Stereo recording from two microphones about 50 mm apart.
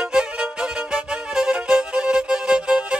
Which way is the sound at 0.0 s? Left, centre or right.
Centre.